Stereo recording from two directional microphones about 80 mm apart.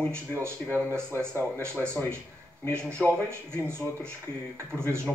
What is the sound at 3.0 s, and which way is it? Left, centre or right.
Speech, right.